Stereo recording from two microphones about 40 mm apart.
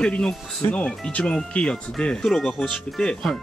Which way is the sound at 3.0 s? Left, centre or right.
Left.